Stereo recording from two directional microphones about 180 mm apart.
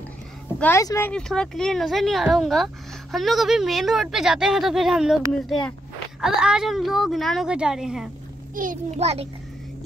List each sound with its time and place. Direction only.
0.6 s speech: 15° left (ahead or behind); by 8.1 s 5° right (ahead or behind)
8.6 s a child's voice: 50° right (ahead or behind)
8.9 s a child's voice: 35° right (ahead or behind)